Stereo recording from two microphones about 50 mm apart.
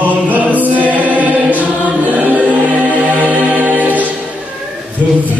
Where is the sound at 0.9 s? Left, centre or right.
Right.